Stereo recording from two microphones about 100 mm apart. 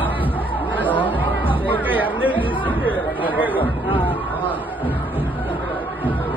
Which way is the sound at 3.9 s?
15° left (ahead or behind).